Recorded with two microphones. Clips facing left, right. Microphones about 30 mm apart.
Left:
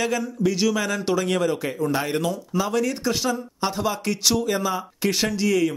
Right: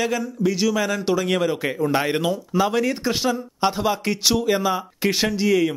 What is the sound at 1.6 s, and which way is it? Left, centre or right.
Speech, right.